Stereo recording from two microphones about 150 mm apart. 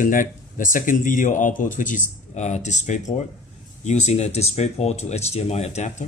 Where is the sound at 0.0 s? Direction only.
60° left (ahead or behind); by 5.7 s 45° left (ahead or behind).